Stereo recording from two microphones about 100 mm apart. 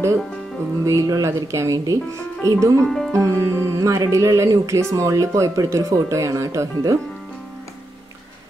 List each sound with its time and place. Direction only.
0.8 s speech: 35° right (ahead or behind)
2.8 s speech: 5° left (ahead or behind)
3.2 s speech: 30° right (ahead or behind)